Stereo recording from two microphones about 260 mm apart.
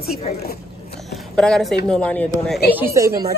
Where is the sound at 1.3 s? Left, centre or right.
Centre.